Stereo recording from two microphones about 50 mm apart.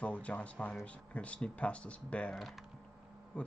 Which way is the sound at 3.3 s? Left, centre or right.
Left.